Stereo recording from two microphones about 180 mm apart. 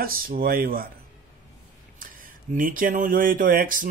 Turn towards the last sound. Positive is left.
turn(degrees=-50)  # may be behind; listen again after turning